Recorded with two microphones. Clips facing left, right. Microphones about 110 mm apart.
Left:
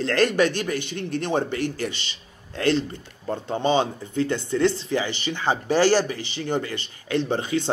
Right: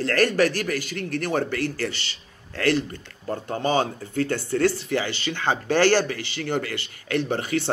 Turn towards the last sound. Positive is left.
turn(degrees=20)  # may be behind; listen again after turning